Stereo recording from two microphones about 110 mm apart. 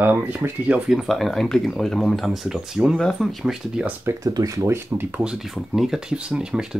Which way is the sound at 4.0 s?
30° right (ahead or behind).